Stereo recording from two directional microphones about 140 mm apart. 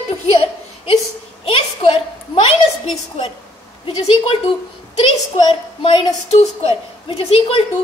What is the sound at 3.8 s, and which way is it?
Speech, 40° left (ahead or behind).